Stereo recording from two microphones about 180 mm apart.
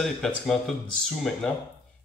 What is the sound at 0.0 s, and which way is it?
Speech, centre (ahead or behind).